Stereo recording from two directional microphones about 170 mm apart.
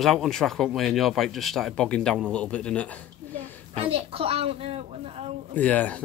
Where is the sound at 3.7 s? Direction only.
35° right (ahead or behind).